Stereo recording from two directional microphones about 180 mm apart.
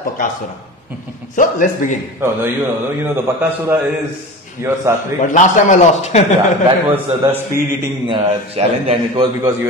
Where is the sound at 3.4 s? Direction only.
10° right (ahead or behind).